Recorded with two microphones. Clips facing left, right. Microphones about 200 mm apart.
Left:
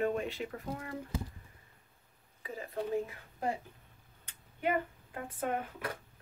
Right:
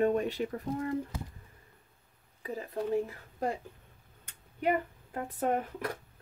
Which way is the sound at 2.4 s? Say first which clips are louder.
Right 3 dB; 40° right (ahead or behind).